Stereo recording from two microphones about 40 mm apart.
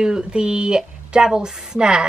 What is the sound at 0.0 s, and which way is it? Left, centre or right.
A woman's voice, centre.